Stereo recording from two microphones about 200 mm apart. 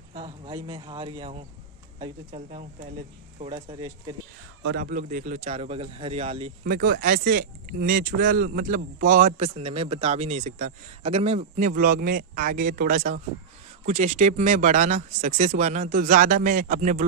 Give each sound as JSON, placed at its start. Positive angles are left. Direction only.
{"t": 0.1, "sound": "speech", "side_deg": -25}
{"t": 2.3, "sound": "a man's voice", "side_deg": -35}
{"t": 4.7, "sound": "a man's voice", "side_deg": -40}
{"t": 6.6, "sound": "speech", "side_deg": -50}
{"t": 9.4, "sound": "a man's voice", "side_deg": -30}